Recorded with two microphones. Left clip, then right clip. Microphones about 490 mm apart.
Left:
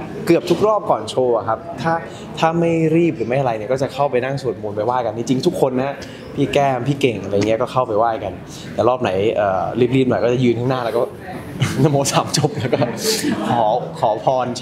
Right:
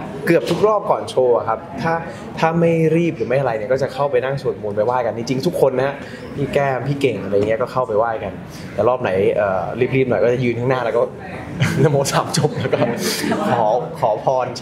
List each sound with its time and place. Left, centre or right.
0.2 s speech: centre